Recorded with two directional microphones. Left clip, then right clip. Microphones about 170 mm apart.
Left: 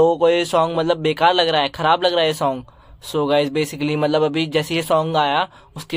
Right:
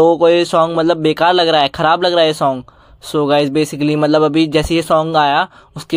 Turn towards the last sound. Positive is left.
turn(degrees=-30)  # may be behind; listen again after turning